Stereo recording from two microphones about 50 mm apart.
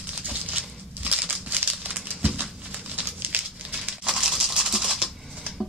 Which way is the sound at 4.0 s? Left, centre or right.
Centre.